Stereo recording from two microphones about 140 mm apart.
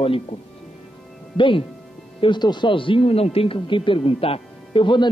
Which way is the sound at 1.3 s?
35° left (ahead or behind).